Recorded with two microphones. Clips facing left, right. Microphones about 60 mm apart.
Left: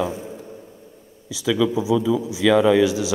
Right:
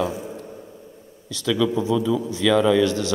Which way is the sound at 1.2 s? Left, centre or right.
Centre.